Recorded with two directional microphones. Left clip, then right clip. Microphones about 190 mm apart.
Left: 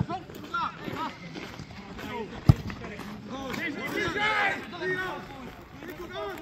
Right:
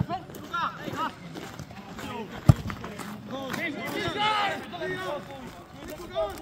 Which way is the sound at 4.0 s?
90° right.